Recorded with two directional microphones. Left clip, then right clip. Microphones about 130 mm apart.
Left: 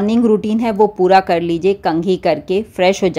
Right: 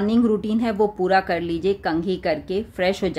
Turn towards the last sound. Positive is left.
turn(degrees=40)  # may be behind; listen again after turning